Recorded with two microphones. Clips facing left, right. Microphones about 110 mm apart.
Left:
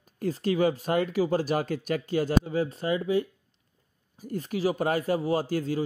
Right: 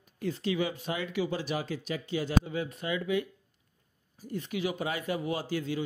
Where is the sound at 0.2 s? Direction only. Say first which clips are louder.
Left 6 dB; 45° left (ahead or behind).